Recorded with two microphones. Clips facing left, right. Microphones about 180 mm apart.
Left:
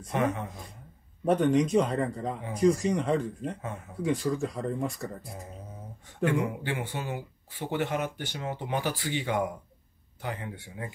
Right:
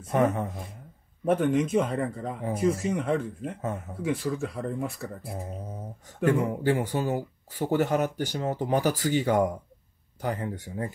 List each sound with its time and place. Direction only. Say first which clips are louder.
0.1 s speech: right 4 dB; 40° right (ahead or behind)
1.2 s speech: even; 5° right (ahead or behind)
5.3 s speech: right 6 dB; 40° right (ahead or behind)